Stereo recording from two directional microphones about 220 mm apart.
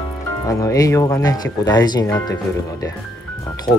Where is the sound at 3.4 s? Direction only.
15° left (ahead or behind).